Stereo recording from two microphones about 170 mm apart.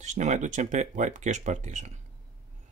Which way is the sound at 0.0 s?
45° right (ahead or behind).